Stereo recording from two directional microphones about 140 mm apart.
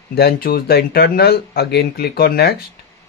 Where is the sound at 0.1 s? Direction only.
90° left.